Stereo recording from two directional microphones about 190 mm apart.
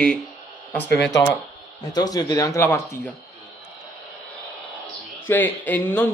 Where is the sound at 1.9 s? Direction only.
20° left (ahead or behind).